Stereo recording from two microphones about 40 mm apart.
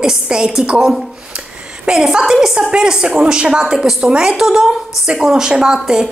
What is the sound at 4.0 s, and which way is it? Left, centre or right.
Speech, right.